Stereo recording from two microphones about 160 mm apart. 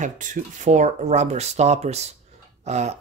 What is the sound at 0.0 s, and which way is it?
Speech, 50° right (ahead or behind).